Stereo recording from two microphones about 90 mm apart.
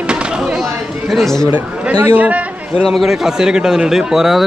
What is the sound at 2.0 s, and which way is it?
Speech, 15° right (ahead or behind).